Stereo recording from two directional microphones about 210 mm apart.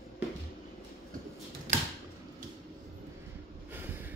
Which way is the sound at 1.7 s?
35° right (ahead or behind).